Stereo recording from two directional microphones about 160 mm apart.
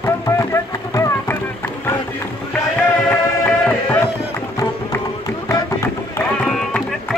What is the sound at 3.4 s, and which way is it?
Music, 10° left (ahead or behind).